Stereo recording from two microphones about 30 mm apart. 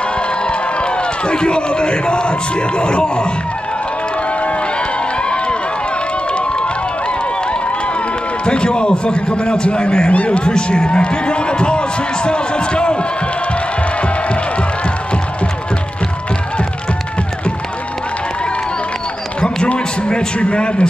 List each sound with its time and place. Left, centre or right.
0.5 s crowd: left
2.8 s a man's voice: left
8.5 s a man's voice: left
10.1 s speech: left
10.4 s a man's voice: left
20.3 s a man's voice: left